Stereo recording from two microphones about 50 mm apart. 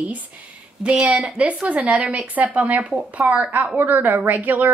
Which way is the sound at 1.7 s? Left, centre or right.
Right.